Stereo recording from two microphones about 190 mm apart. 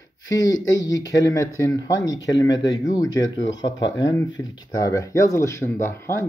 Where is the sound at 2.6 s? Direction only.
80° left.